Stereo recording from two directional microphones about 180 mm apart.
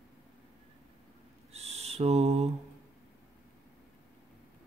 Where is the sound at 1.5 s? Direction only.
35° right (ahead or behind).